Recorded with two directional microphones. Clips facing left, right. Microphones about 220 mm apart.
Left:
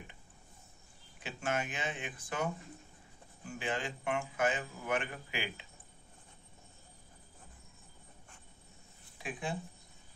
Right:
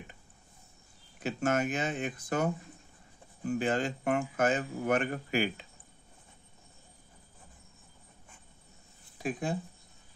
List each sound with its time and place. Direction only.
1.2 s speech: 45° right (ahead or behind)
9.2 s speech: 40° right (ahead or behind)